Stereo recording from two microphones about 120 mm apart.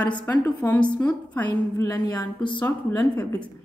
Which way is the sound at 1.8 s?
30° left (ahead or behind).